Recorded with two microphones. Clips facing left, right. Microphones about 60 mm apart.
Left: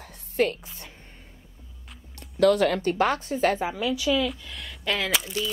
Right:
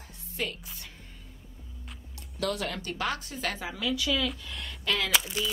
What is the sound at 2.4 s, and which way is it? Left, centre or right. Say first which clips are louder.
Speech: left 12 dB; left.